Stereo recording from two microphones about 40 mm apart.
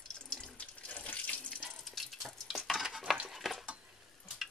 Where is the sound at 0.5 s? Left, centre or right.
Left.